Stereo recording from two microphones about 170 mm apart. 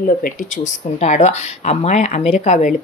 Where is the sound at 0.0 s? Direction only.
55° left (ahead or behind).